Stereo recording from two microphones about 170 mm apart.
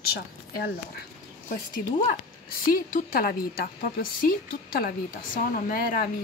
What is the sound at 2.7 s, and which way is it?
A woman's voice, 55° left (ahead or behind).